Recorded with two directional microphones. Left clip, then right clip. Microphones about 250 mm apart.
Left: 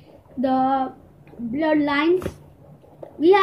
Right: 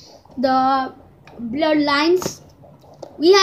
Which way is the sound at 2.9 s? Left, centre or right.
Centre.